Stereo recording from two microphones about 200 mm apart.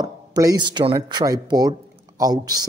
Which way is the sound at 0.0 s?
20° right (ahead or behind).